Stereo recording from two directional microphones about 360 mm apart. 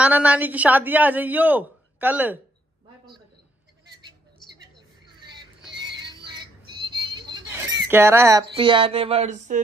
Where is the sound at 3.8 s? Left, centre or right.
Centre.